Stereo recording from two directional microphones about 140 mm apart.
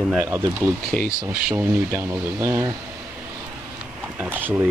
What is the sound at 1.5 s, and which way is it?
Speech, 15° right (ahead or behind).